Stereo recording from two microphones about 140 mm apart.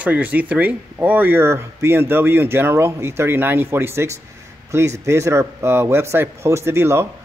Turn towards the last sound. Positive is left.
turn(degrees=-20)  # may be behind; listen again after turning